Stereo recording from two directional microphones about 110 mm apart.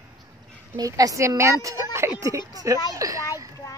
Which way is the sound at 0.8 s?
30° right (ahead or behind).